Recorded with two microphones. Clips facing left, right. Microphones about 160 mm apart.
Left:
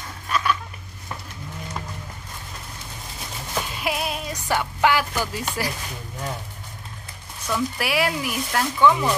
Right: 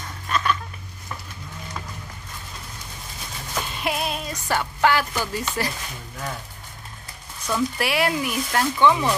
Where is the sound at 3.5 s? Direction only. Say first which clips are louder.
Even; 5° left (ahead or behind).